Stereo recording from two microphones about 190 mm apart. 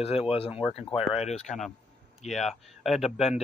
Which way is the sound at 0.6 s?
Centre (ahead or behind).